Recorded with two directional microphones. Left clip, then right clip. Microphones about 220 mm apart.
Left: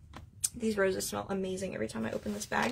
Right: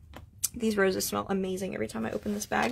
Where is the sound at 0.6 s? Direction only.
50° right (ahead or behind).